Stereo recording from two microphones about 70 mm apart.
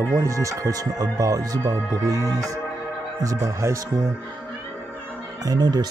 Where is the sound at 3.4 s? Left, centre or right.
Right.